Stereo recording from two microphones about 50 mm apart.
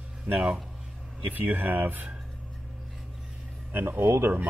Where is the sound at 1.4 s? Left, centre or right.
Right.